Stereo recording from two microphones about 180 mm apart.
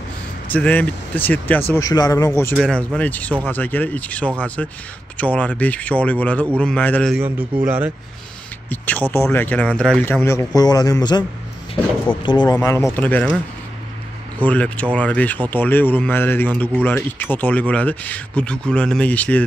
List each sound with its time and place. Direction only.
0.5 s a man's voice: 10° left (ahead or behind)
2.7 s speech: 5° left (ahead or behind)
7.2 s a man's voice: 10° right (ahead or behind)
8.6 s speech: 10° left (ahead or behind)
10.2 s a man's voice: 20° left (ahead or behind)
12.5 s speech: 15° left (ahead or behind)
14.4 s speech: 10° left (ahead or behind)